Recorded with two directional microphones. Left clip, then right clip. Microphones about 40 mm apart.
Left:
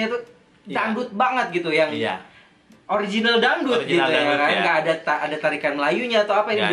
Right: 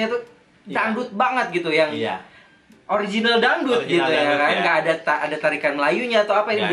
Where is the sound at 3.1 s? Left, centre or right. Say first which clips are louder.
Even; centre.